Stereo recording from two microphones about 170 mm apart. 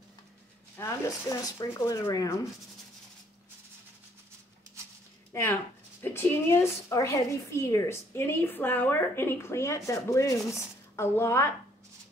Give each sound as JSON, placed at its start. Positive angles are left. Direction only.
{"t": 0.7, "sound": "a woman's voice", "side_deg": 15}
{"t": 5.3, "sound": "a woman's voice", "side_deg": 15}